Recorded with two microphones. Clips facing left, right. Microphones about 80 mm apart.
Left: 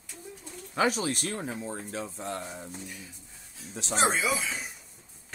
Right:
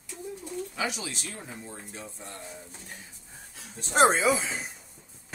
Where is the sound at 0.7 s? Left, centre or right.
Left.